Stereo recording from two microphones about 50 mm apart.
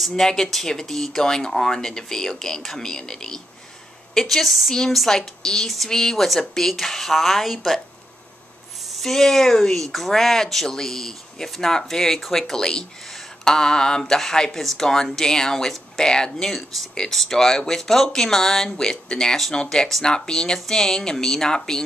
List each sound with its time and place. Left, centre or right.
0.1 s speech: centre
8.9 s speech: centre
17.1 s speech: centre